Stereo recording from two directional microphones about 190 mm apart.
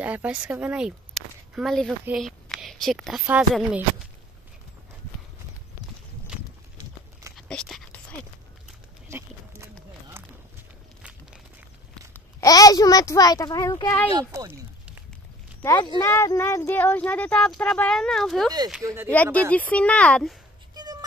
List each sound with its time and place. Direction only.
0.0 s speech: 10° right (ahead or behind)
7.3 s whispering: centre (ahead or behind)
9.1 s a sound: 15° right (ahead or behind)
12.1 s a child's voice: 15° left (ahead or behind)
14.1 s a sound: 20° right (ahead or behind)
15.6 s speech: 15° left (ahead or behind)
18.8 s speech: 15° right (ahead or behind)
19.5 s speech: 5° left (ahead or behind)
20.7 s cat: 20° right (ahead or behind)